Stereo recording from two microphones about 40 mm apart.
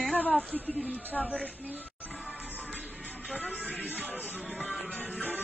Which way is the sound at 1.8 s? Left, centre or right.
Left.